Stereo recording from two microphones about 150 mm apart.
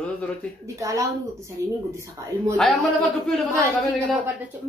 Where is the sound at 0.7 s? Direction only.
20° right (ahead or behind).